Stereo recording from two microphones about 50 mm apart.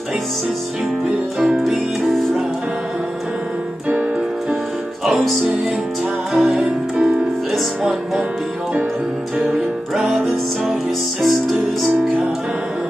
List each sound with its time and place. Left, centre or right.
1.0 s music: centre
1.6 s music: centre
5.0 s music: centre
9.4 s music: centre